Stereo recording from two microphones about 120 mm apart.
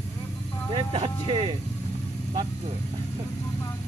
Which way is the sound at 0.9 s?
45° right (ahead or behind).